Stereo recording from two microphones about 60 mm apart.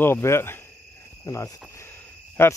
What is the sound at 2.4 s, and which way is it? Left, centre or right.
Cricket, left.